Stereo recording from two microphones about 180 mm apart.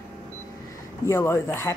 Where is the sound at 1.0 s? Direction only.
15° left (ahead or behind).